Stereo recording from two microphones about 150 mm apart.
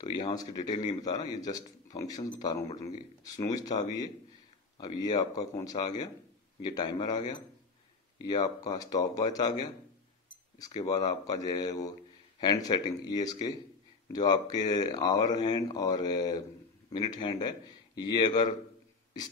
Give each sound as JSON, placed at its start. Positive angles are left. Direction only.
{"t": 0.2, "sound": "speech", "side_deg": 25}
{"t": 10.8, "sound": "speech", "side_deg": 25}